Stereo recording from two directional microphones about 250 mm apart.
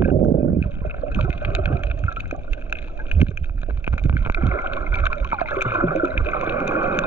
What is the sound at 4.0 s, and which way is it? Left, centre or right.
Boat, centre.